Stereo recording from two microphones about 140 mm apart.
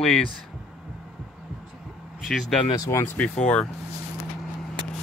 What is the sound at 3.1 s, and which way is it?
Speech, 5° left (ahead or behind).